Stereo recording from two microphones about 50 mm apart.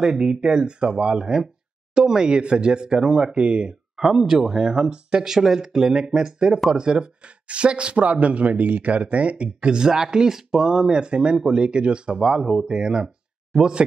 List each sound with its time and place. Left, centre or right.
0.0 s speech: centre
3.9 s speech: centre